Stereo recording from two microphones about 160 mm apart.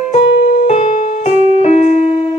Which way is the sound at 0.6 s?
45° left (ahead or behind).